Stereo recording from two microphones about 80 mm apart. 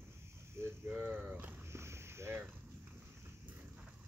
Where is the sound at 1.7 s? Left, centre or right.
Right.